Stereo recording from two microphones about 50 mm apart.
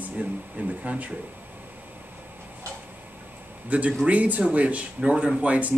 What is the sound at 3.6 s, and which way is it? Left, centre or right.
A man's voice, right.